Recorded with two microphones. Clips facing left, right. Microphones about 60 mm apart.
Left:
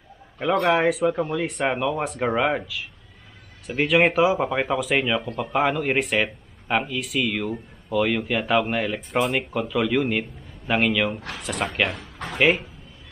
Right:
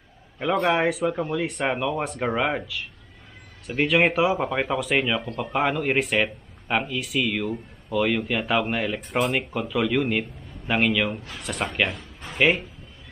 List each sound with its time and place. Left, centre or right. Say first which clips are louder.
0.7 s speech: left 3 dB; centre